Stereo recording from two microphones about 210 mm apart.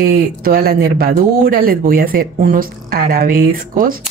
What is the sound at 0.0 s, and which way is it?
A woman's voice, 45° right (ahead or behind).